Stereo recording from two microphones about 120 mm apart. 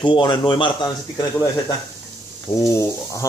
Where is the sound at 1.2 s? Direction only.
30° left (ahead or behind).